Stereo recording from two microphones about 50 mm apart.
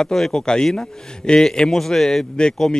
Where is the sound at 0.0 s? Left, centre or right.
Centre.